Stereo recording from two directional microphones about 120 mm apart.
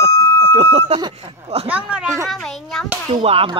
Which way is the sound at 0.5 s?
60° right (ahead or behind).